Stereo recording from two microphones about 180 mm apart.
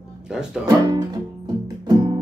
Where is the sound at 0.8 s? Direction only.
20° right (ahead or behind).